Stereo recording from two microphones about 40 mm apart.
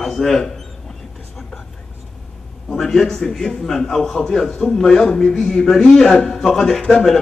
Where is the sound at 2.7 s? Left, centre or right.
Centre.